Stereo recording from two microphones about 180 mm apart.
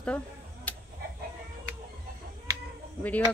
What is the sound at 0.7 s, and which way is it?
Chicken, 10° left (ahead or behind).